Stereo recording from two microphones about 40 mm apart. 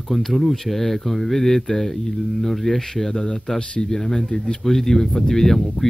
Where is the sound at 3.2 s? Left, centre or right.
Centre.